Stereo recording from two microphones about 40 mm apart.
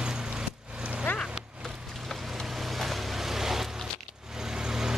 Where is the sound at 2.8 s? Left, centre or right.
Centre.